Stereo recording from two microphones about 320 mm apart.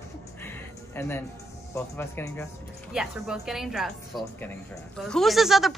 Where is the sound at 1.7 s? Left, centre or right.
Centre.